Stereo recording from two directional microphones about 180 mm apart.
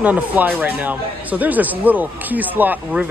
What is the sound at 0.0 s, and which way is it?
Speech, 10° right (ahead or behind).